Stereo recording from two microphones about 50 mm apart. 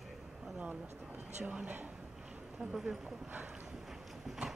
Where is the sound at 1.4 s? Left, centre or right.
Right.